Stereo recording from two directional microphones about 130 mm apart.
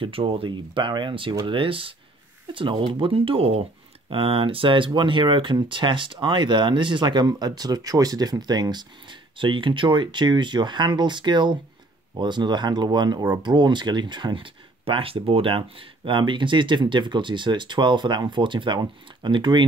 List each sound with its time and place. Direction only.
0.0 s speech: 45° right (ahead or behind)